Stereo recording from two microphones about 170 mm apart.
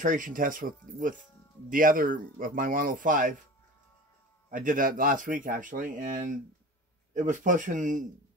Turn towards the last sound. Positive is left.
turn(degrees=-50)  # may be behind; listen again after turning